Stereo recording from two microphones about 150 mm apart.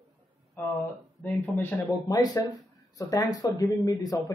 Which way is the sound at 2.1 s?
25° left (ahead or behind).